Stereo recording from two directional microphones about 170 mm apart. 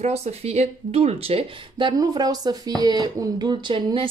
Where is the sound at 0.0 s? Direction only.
40° right (ahead or behind).